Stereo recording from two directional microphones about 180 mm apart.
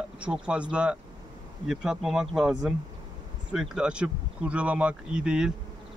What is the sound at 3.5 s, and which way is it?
Speech, 5° right (ahead or behind).